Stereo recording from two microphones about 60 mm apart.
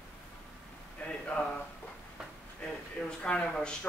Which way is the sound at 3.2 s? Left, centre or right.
Left.